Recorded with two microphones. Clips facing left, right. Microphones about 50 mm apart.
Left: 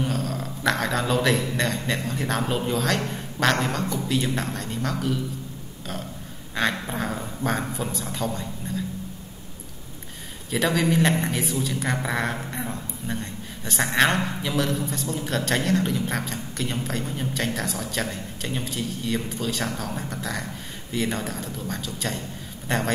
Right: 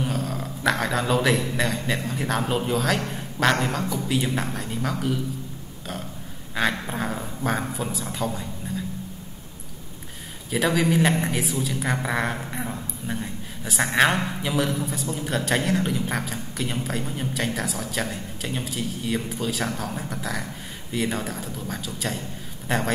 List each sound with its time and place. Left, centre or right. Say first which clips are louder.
0.0 s a man's voice: even; centre
6.5 s speech: even; centre
10.5 s a woman's voice: right 1 dB; centre